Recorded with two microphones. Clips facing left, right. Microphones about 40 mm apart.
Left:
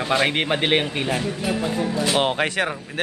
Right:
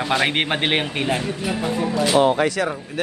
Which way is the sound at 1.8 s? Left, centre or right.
Right.